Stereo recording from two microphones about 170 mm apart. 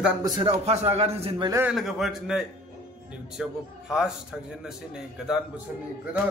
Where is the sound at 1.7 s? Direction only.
Centre (ahead or behind).